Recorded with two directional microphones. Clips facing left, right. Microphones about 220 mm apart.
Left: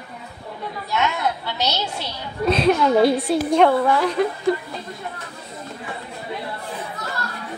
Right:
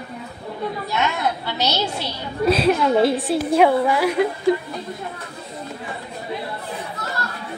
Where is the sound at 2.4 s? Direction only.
5° right (ahead or behind).